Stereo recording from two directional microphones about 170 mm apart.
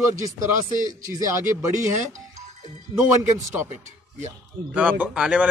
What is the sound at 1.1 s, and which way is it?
Speech, 15° right (ahead or behind).